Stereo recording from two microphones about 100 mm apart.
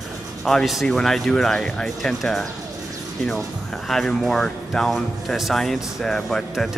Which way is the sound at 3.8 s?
5° left (ahead or behind).